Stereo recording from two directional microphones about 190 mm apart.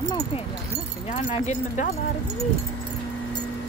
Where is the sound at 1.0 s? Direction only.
40° left (ahead or behind).